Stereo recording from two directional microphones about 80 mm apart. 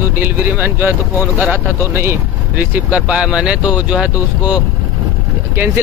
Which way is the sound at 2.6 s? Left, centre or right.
Centre.